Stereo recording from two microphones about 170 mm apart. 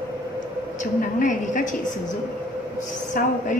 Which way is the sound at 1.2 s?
50° left (ahead or behind).